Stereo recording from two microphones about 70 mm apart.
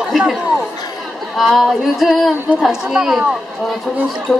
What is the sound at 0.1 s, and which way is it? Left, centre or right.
Chatter, centre.